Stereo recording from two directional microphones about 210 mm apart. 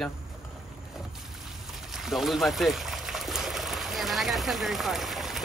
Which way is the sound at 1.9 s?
Centre (ahead or behind).